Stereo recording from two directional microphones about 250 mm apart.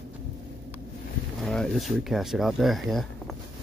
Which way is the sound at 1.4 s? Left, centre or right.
Centre.